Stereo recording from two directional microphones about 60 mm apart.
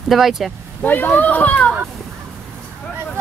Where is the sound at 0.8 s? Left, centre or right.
Left.